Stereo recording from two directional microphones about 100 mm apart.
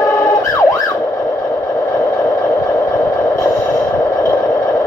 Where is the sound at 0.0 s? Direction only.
30° left (ahead or behind).